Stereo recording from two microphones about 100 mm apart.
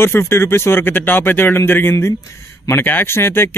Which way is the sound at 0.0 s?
25° left (ahead or behind).